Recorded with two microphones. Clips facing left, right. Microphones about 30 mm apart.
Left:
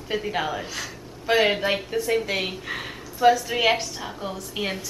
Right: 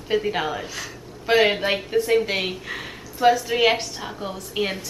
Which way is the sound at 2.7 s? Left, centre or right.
Centre.